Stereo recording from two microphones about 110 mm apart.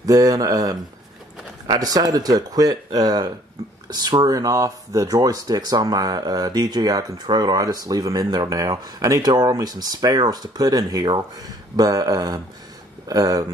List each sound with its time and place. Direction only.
0.0 s speech: 35° right (ahead or behind)